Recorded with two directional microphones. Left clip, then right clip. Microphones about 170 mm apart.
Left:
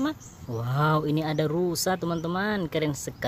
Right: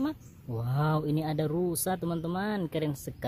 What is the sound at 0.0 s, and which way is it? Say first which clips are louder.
Speech: left 4 dB; 5° right (ahead or behind).